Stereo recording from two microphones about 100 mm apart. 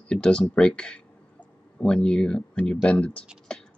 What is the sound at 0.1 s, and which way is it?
Speech, 10° left (ahead or behind).